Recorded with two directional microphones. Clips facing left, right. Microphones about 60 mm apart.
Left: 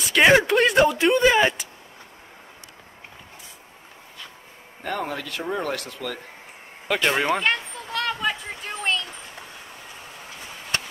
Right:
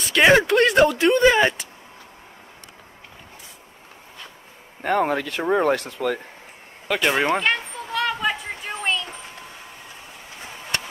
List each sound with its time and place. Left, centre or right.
0.0 s speech: centre
4.8 s speech: right
6.9 s speech: centre
7.3 s a sound: centre